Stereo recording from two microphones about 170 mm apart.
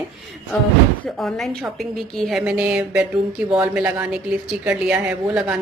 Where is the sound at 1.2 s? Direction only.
Centre (ahead or behind).